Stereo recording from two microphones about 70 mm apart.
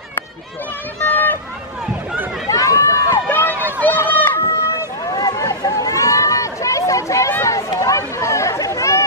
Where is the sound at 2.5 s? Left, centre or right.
Left.